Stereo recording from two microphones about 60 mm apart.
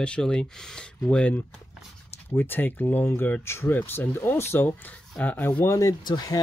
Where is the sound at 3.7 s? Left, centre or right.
Left.